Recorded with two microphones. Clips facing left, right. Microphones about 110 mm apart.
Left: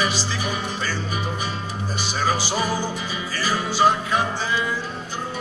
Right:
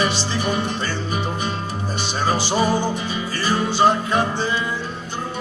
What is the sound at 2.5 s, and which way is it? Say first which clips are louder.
Speech: right 5 dB; 25° right (ahead or behind).